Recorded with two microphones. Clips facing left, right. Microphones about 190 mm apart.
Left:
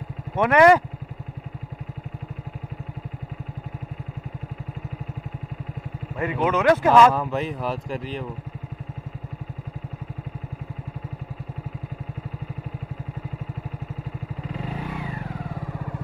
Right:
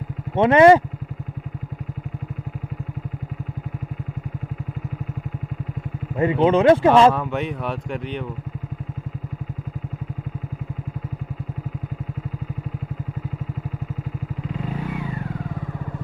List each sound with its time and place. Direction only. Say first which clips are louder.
0.4 s speech: right 3 dB; 25° right (ahead or behind)
6.1 s speech: right 6 dB; 25° right (ahead or behind)
7.2 s speech: right 1 dB; centre (ahead or behind)